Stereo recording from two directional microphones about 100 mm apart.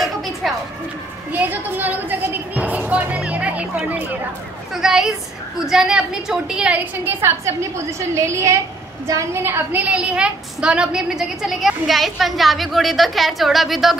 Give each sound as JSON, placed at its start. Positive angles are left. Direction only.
{"t": 0.0, "sound": "a sound", "side_deg": 0}
{"t": 1.3, "sound": "a woman's voice", "side_deg": -20}
{"t": 7.1, "sound": "a woman's voice", "side_deg": -25}